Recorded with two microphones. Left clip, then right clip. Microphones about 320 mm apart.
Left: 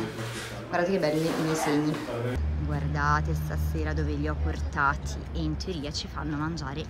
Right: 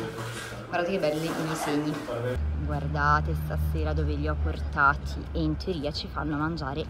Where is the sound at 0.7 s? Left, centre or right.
Centre.